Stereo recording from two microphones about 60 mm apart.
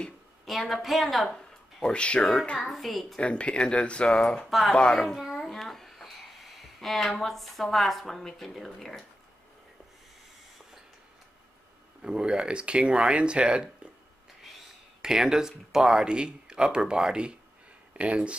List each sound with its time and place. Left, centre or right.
0.5 s speech: centre
2.6 s speech: centre
3.2 s speech: centre
4.5 s speech: centre
4.9 s a sound: centre
6.8 s speech: centre
12.0 s speech: centre
15.0 s speech: centre